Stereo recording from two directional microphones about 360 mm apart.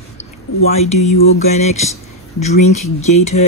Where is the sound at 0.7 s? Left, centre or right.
Centre.